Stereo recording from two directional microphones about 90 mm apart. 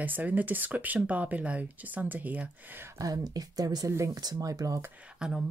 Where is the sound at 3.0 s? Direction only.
45° right (ahead or behind).